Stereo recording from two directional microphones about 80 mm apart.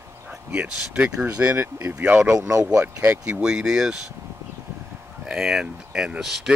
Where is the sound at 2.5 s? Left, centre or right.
Right.